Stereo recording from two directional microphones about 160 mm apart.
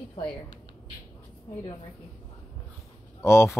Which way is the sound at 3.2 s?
15° left (ahead or behind).